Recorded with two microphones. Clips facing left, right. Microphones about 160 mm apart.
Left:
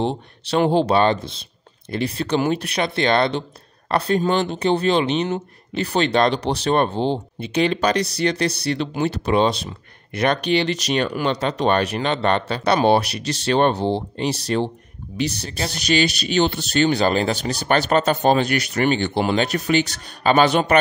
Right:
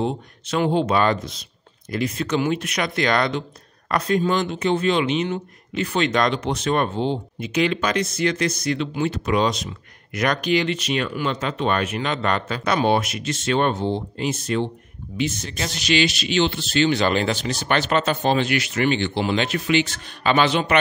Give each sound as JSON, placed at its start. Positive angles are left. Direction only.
{"t": 0.0, "sound": "speech", "side_deg": 30}